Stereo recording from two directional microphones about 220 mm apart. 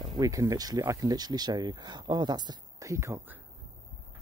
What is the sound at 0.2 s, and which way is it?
Speech, 15° right (ahead or behind).